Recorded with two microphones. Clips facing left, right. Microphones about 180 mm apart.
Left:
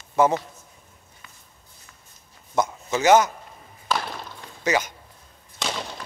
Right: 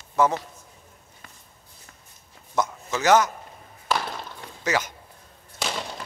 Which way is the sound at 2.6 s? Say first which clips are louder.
Left 2 dB; 20° left (ahead or behind).